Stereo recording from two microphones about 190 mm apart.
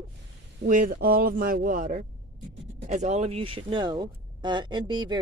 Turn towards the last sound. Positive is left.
turn(degrees=-25)  # may be behind; listen again after turning